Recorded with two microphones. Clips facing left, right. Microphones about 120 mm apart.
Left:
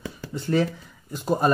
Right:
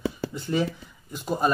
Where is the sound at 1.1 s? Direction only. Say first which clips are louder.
Left 3 dB; centre (ahead or behind).